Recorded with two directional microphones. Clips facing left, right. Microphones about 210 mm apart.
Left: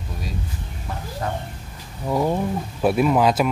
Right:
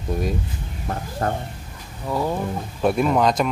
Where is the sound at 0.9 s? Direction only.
50° right (ahead or behind).